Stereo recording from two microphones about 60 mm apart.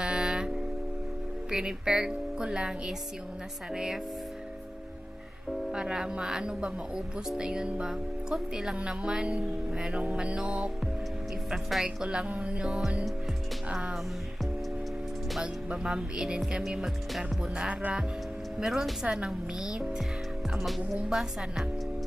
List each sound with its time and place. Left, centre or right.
0.0 s music: centre
1.5 s speech: centre
5.7 s speech: centre
11.8 s speech: centre
15.4 s speech: centre